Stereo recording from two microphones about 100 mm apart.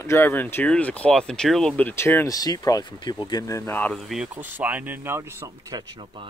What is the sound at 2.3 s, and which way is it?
Speech, 40° left (ahead or behind).